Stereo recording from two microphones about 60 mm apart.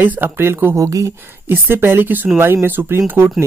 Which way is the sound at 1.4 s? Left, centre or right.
Right.